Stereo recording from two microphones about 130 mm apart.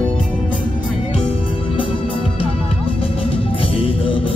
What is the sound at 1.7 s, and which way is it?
Music, 45° left (ahead or behind).